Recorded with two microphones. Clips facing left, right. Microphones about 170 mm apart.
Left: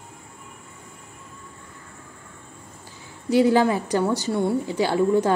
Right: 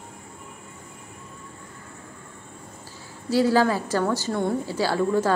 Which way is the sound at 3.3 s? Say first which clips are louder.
Left 2 dB; 20° left (ahead or behind).